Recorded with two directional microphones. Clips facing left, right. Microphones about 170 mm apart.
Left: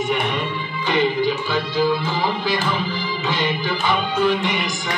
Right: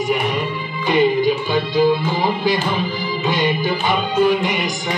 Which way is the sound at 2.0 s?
15° right (ahead or behind).